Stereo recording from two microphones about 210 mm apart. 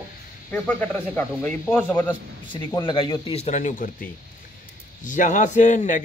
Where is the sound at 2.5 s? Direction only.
25° left (ahead or behind).